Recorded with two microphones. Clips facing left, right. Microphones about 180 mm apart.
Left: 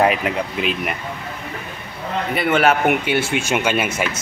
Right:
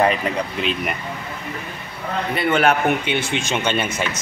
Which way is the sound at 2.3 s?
5° left (ahead or behind).